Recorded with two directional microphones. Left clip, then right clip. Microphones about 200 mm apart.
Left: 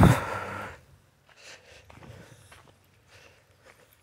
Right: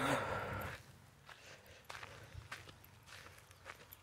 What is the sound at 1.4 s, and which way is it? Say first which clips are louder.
Walk: left 9 dB; 50° left (ahead or behind).